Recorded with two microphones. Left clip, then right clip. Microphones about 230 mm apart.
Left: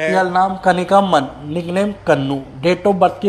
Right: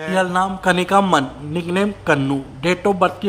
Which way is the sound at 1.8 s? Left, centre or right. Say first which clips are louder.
Left 3 dB; centre.